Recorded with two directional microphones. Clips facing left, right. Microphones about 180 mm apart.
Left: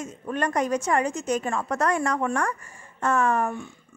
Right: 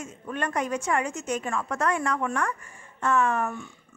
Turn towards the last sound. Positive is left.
turn(degrees=35)  # may be behind; listen again after turning